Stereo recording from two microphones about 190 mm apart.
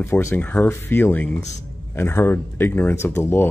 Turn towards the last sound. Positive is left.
turn(degrees=15)  # may be behind; listen again after turning